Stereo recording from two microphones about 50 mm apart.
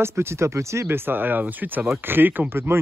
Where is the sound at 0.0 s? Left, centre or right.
Right.